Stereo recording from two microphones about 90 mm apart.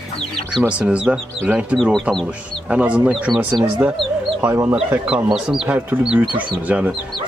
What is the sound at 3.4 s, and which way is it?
Speech, 25° right (ahead or behind).